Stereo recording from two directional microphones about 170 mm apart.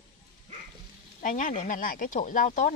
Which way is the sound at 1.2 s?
50° left (ahead or behind).